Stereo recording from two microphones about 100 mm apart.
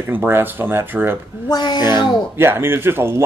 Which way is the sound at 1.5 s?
45° left (ahead or behind).